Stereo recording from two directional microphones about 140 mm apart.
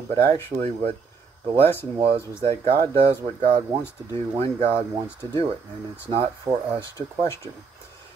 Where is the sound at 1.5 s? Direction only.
15° left (ahead or behind).